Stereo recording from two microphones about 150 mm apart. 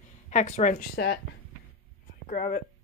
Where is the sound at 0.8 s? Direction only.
90° left.